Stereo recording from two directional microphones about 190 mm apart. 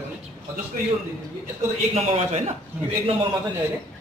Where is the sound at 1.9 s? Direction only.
35° right (ahead or behind).